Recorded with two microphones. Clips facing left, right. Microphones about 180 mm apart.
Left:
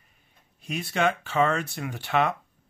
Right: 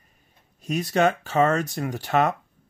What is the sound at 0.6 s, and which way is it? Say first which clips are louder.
Speech: right 5 dB; 40° right (ahead or behind).